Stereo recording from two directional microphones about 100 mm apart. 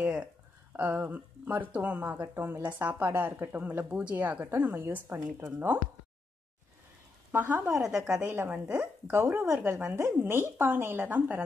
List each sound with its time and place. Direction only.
0.7 s speech: 15° right (ahead or behind)
7.3 s speech: 20° right (ahead or behind)
8.3 s speech: 20° right (ahead or behind)